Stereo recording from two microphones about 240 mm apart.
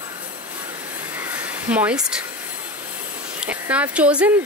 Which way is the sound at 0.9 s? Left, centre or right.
Centre.